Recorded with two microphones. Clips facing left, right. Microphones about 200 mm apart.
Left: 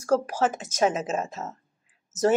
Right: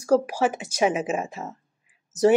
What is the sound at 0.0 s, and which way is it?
A woman's voice, 15° right (ahead or behind).